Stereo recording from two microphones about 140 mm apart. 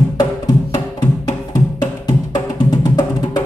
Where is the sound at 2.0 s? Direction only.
30° left (ahead or behind).